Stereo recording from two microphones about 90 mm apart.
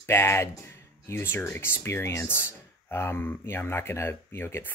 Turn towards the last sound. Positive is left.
turn(degrees=25)  # may be behind; listen again after turning